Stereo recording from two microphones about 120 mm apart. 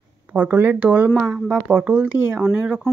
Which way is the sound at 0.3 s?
15° right (ahead or behind).